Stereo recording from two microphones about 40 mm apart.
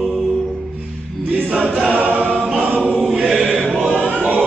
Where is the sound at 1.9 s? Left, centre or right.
Right.